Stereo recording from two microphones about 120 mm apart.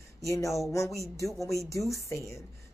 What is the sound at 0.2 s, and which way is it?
Speech, 25° left (ahead or behind).